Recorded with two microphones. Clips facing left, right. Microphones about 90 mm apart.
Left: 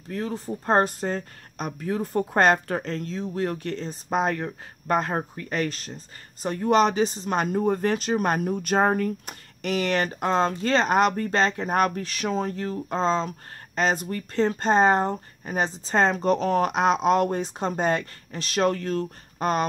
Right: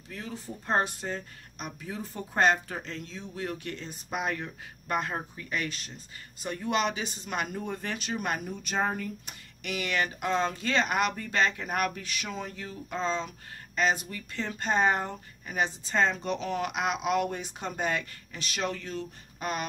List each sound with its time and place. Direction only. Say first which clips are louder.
0.1 s speech: left 10 dB; 40° left (ahead or behind)